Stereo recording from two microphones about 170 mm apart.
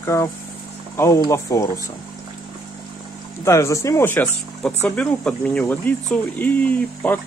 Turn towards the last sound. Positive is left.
turn(degrees=10)  # may be behind; listen again after turning